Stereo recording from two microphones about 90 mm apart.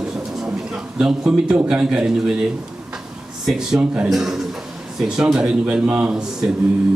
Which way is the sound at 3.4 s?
5° right (ahead or behind).